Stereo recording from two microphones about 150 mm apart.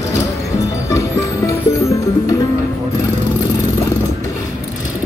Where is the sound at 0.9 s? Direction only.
20° left (ahead or behind).